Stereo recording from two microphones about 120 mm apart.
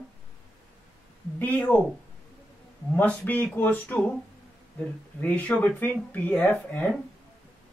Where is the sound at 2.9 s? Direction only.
10° left (ahead or behind).